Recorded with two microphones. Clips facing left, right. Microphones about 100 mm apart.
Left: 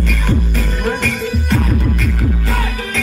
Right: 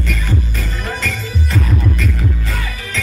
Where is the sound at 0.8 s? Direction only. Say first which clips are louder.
Left 6 dB; 60° left (ahead or behind).